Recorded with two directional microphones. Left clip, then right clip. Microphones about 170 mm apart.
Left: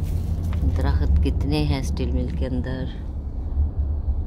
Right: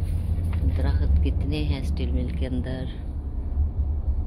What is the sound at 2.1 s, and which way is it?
Speech, 5° left (ahead or behind).